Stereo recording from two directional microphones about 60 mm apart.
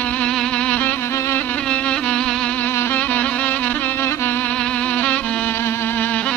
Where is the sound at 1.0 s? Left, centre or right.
Left.